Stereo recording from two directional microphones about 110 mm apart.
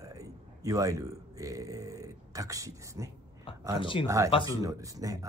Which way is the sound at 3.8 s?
50° left (ahead or behind).